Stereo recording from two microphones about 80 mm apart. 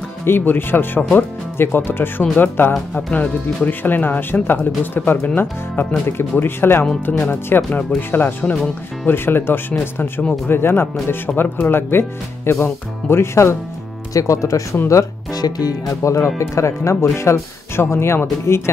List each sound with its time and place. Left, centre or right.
0.2 s speech: left
2.7 s speech: centre
3.2 s speech: left
14.9 s music: left
15.4 s speech: left